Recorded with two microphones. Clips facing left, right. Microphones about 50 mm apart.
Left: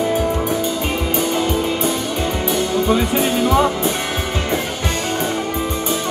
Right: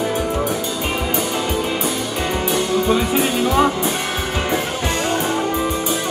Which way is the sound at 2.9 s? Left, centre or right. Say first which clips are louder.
Left 1 dB; centre.